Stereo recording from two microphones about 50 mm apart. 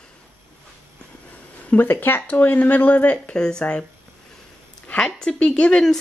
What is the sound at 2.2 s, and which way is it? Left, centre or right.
Speech, left.